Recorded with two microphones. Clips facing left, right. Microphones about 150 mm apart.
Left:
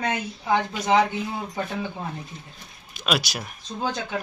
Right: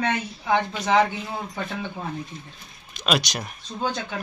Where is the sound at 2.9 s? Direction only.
5° left (ahead or behind).